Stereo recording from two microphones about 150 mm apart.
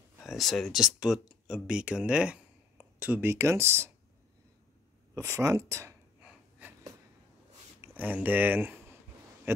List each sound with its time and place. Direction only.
0.2 s speech: centre (ahead or behind); by 3.9 s 15° right (ahead or behind)
5.1 s speech: 20° right (ahead or behind)
6.6 s a sound: 10° right (ahead or behind)
7.8 s speech: 10° right (ahead or behind)